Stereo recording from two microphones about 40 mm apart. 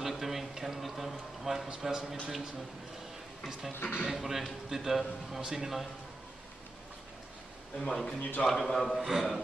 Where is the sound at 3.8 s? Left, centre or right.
Left.